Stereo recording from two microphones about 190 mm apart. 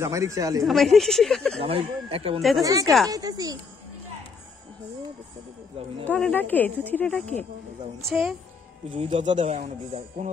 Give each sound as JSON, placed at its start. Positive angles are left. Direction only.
{"t": 0.0, "sound": "speech", "side_deg": -15}
{"t": 0.7, "sound": "speech", "side_deg": 0}
{"t": 1.6, "sound": "speech", "side_deg": -30}
{"t": 2.6, "sound": "speech", "side_deg": -20}
{"t": 6.0, "sound": "speech", "side_deg": 5}
{"t": 8.9, "sound": "speech", "side_deg": -40}